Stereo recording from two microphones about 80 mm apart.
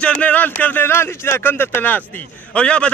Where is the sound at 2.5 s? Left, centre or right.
Centre.